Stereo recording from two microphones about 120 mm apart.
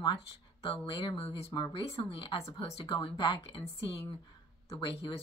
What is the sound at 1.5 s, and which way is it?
Speech, 45° left (ahead or behind).